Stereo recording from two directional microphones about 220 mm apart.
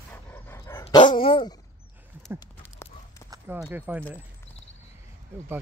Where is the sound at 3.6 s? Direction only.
5° right (ahead or behind).